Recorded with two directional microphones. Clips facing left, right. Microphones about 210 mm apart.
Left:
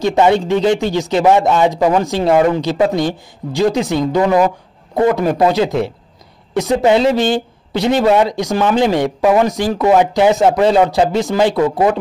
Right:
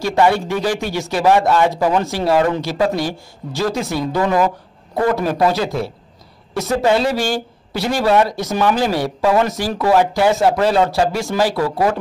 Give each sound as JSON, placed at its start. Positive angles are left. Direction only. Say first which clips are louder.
{"t": 0.0, "sound": "speech", "louder": "left 3 dB", "side_deg": 20}